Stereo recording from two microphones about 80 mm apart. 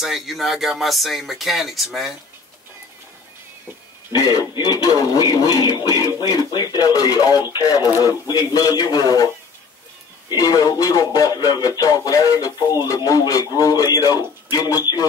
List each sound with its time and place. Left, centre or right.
0.0 s speech: centre
4.1 s speech: left
6.1 s speech: left
10.3 s speech: left
12.9 s speech: left